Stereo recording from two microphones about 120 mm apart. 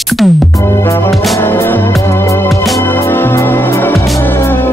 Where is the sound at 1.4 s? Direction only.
20° left (ahead or behind).